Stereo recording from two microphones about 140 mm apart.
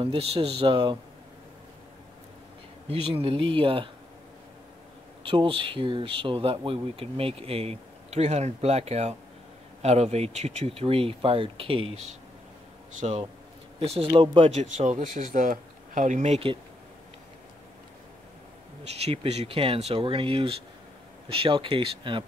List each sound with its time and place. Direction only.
0.0 s speech: 40° right (ahead or behind)
2.9 s speech: 45° right (ahead or behind)
5.2 s speech: 35° right (ahead or behind)
13.0 s speech: 50° right (ahead or behind)
14.6 s speech: 55° right (ahead or behind)
18.9 s speech: 50° right (ahead or behind)